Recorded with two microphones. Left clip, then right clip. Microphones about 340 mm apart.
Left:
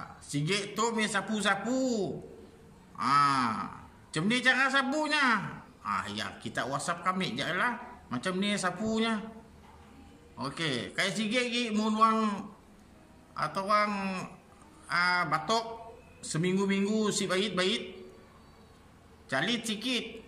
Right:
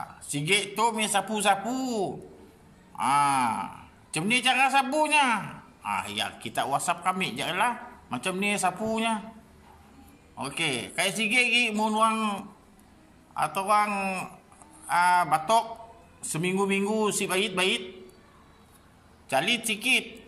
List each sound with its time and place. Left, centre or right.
0.3 s speech: centre
1.6 s a man's voice: centre
3.0 s a man's voice: centre
10.4 s speech: centre
19.2 s speech: centre